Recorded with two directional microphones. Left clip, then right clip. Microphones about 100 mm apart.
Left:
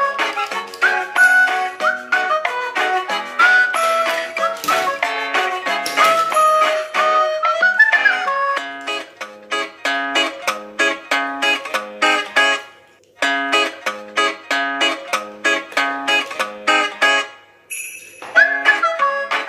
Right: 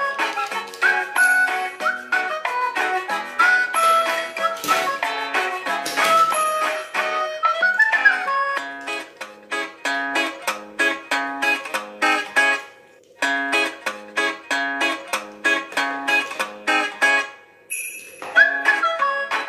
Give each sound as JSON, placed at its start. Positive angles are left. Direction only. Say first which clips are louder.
{"t": 0.0, "sound": "music", "louder": "left 4 dB", "side_deg": 30}
{"t": 18.3, "sound": "music", "louder": "left 3 dB", "side_deg": 25}